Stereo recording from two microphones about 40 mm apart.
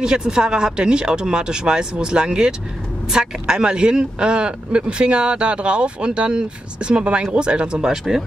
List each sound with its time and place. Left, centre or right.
0.0 s speech: centre